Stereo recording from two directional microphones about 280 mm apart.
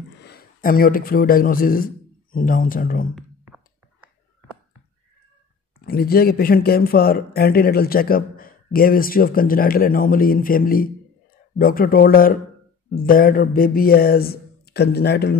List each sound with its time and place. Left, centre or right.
0.2 s a man's voice: left
3.2 s a sound: centre
5.9 s speech: left